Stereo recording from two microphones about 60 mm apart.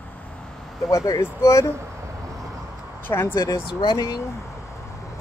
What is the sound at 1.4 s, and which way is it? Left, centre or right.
Speech, left.